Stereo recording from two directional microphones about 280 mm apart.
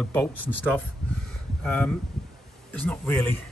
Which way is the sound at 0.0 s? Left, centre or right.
Centre.